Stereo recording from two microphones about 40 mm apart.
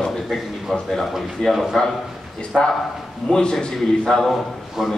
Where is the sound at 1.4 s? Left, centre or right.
Centre.